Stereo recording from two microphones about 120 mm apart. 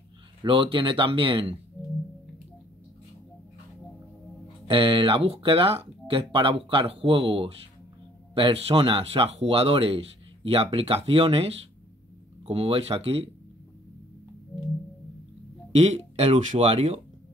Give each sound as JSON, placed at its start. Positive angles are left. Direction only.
{"t": 0.4, "sound": "speech", "side_deg": -45}
{"t": 4.6, "sound": "speech", "side_deg": -45}
{"t": 15.8, "sound": "speech", "side_deg": -65}